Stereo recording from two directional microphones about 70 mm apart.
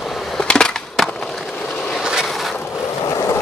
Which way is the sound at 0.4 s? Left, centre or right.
Centre.